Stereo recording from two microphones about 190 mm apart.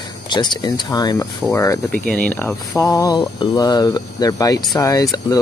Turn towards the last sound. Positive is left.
turn(degrees=20)  # may be behind; listen again after turning